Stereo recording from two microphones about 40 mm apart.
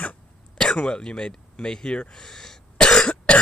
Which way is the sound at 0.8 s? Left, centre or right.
Left.